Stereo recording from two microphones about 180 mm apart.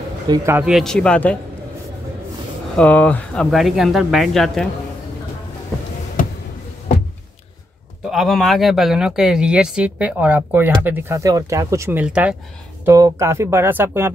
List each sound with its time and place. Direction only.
0.3 s speech: 15° right (ahead or behind)
0.7 s speech: centre (ahead or behind)
2.7 s speech: 10° left (ahead or behind)
8.1 s speech: centre (ahead or behind)
12.8 s speech: 15° right (ahead or behind)